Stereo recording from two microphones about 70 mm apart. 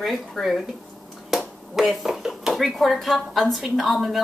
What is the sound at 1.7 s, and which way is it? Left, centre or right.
Speech, centre.